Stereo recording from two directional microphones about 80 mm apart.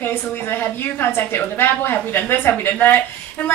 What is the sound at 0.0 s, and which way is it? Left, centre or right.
A woman's voice, left.